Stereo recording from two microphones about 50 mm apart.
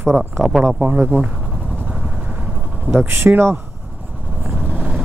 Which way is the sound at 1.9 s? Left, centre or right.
Right.